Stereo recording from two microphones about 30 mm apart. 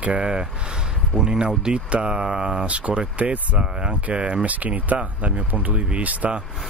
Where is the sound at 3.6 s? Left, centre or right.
Right.